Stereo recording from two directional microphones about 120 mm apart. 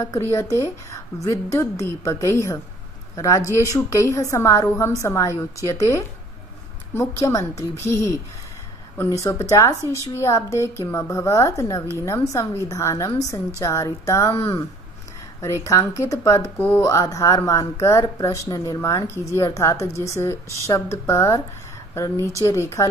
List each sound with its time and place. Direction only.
0.0 s a woman's voice: 20° left (ahead or behind)
9.2 s a woman's voice: 25° left (ahead or behind)
16.5 s speech: 15° left (ahead or behind)
16.8 s a woman's voice: 25° left (ahead or behind)